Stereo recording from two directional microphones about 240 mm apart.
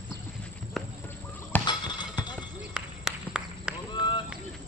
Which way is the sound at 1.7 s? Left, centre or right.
Centre.